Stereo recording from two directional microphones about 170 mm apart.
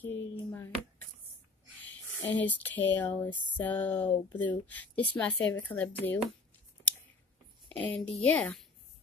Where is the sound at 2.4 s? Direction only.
10° left (ahead or behind).